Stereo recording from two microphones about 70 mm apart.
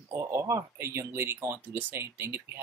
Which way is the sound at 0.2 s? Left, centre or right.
Right.